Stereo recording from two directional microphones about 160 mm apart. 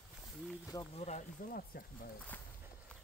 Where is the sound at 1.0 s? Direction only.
50° left (ahead or behind).